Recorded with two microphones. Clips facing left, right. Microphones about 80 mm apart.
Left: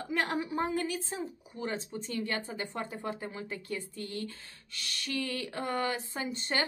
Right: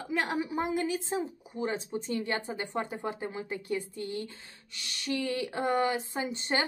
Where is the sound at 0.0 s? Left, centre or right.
Centre.